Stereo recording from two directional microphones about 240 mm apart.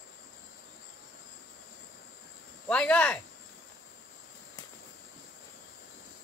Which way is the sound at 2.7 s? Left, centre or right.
Centre.